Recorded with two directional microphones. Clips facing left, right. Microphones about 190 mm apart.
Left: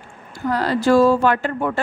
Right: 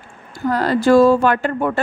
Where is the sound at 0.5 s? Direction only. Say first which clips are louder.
Right 3 dB; 50° right (ahead or behind).